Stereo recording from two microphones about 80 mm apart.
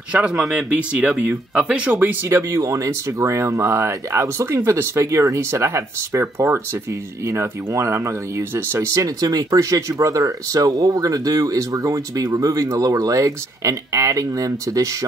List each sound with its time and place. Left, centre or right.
0.1 s speech: centre; by 14.9 s right